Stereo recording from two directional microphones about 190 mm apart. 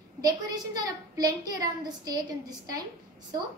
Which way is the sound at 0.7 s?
20° right (ahead or behind).